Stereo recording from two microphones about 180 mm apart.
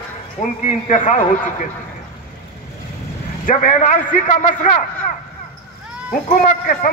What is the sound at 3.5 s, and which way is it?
Speech, 45° left (ahead or behind).